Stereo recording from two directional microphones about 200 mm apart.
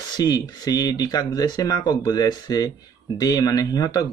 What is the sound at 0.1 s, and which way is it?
Speech, 20° left (ahead or behind).